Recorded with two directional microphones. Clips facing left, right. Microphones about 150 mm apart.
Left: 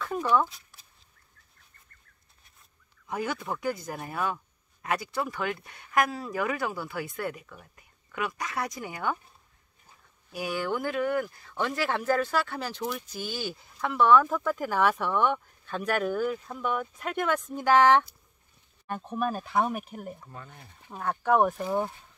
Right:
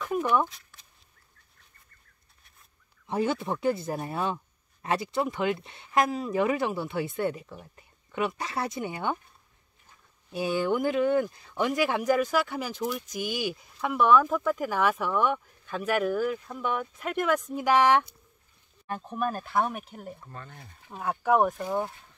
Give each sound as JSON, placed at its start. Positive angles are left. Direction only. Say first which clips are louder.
{"t": 0.0, "sound": "a sound", "louder": "even", "side_deg": -15}
{"t": 3.1, "sound": "speech", "louder": "right 4 dB", "side_deg": -25}
{"t": 10.3, "sound": "speech", "louder": "right 4 dB", "side_deg": -25}
{"t": 18.9, "sound": "speech", "louder": "even", "side_deg": 0}
{"t": 21.0, "sound": "speech", "louder": "even", "side_deg": -5}